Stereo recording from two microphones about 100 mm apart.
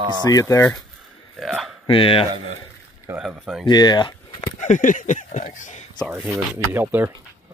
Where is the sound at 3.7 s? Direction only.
45° left (ahead or behind).